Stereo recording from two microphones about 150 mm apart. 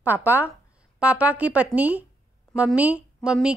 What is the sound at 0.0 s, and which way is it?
A woman's voice, 15° right (ahead or behind).